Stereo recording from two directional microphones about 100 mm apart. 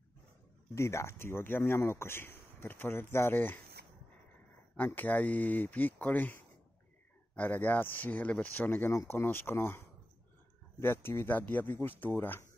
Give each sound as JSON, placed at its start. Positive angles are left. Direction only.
{"t": 0.7, "sound": "speech", "side_deg": 25}
{"t": 4.7, "sound": "speech", "side_deg": 15}